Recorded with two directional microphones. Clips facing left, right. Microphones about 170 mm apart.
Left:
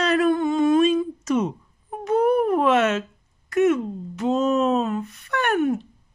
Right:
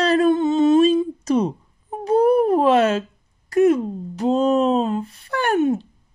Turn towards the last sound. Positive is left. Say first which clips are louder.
# right 2 dB
turn(degrees=-30)  # may be behind; listen again after turning